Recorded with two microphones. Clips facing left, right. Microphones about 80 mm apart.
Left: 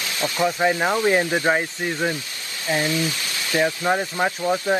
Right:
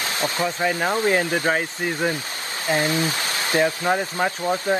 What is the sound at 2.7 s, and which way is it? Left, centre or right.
Speech, right.